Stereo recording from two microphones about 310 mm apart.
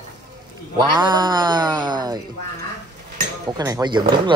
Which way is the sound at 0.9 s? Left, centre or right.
Centre.